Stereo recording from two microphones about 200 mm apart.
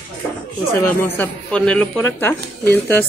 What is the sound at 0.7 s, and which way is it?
Speech, 10° left (ahead or behind).